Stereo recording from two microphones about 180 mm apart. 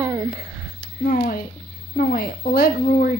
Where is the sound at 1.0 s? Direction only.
55° left (ahead or behind).